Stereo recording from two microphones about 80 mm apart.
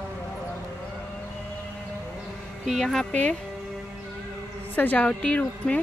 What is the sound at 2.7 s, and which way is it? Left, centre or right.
Speech, centre.